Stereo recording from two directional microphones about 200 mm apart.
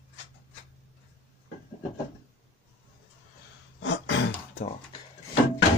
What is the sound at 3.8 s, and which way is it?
Throat clearing, 65° left (ahead or behind).